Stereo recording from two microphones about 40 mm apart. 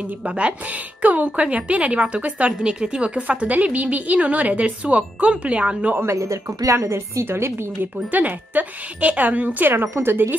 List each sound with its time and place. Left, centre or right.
0.2 s a woman's voice: right
1.0 s a woman's voice: right
6.9 s a woman's voice: right
8.1 s speech: right